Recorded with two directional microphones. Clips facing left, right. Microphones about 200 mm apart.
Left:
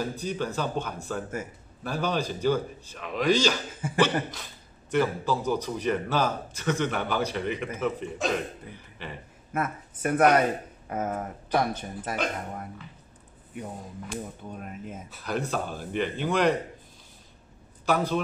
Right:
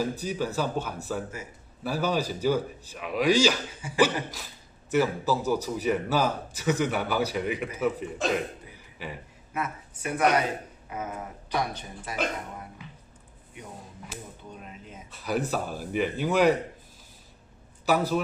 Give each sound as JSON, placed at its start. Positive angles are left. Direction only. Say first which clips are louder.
{"t": 0.0, "sound": "a man's voice", "louder": "right 1 dB", "side_deg": -5}
{"t": 9.5, "sound": "speech", "louder": "left 3 dB", "side_deg": 50}
{"t": 14.6, "sound": "speech", "louder": "left 6 dB", "side_deg": 50}
{"t": 15.0, "sound": "a man's voice", "louder": "right 3 dB", "side_deg": -5}
{"t": 17.8, "sound": "a man's voice", "louder": "right 1 dB", "side_deg": -5}